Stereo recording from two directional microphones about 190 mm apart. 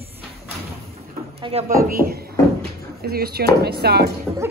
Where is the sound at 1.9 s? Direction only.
50° right (ahead or behind).